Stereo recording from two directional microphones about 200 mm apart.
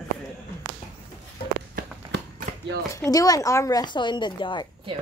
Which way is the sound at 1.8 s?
45° right (ahead or behind).